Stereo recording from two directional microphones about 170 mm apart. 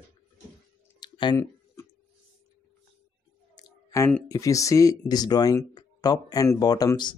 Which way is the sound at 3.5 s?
20° left (ahead or behind).